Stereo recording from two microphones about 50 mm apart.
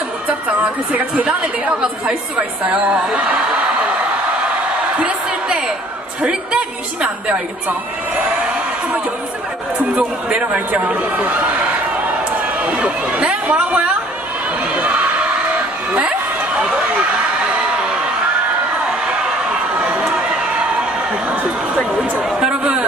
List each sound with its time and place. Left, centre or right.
0.5 s a woman's voice: right
4.9 s a sound: centre
6.2 s a woman's voice: right
9.9 s a woman's voice: right
14.7 s crowd: right
15.9 s a sound: right
19.8 s run: right
22.4 s speech: centre